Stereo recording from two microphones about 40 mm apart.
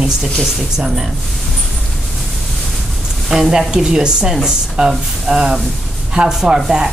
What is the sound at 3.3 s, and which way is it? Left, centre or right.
Speech, centre.